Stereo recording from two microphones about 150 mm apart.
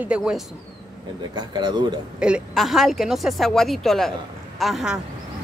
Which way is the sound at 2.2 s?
5° right (ahead or behind).